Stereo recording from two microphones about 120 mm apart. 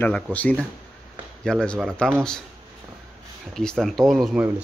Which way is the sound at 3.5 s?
5° left (ahead or behind).